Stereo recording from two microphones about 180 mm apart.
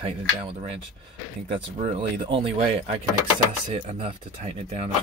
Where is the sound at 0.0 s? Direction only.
30° right (ahead or behind).